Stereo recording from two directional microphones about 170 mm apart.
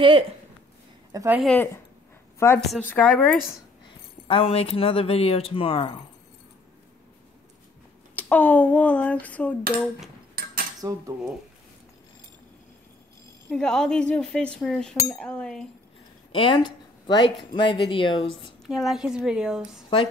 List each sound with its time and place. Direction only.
1.1 s a woman's voice: 15° right (ahead or behind)
1.4 s a sound: 10° left (ahead or behind)
2.3 s a woman's voice: 15° left (ahead or behind)
2.9 s a sound: 10° left (ahead or behind)
4.3 s speech: 35° left (ahead or behind)
8.2 s a sound: 10° left (ahead or behind)
9.8 s speech: centre (ahead or behind)
10.4 s cutlery: 60° right (ahead or behind)
10.8 s cutlery: 20° right (ahead or behind)
13.5 s speech: 5° left (ahead or behind)
15.0 s a sound: 5° left (ahead or behind)
16.3 s speech: 30° left (ahead or behind)
18.7 s speech: centre (ahead or behind)